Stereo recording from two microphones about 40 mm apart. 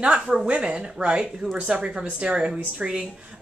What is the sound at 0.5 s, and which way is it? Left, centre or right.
Speech, right.